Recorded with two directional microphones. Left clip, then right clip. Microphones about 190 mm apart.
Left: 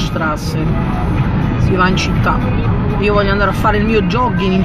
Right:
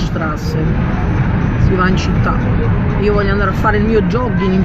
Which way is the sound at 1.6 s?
5° left (ahead or behind).